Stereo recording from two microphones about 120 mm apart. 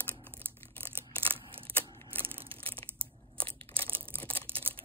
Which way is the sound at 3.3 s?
50° right (ahead or behind).